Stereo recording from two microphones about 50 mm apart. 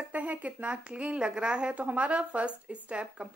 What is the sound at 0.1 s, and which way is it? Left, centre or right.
A woman's voice, right.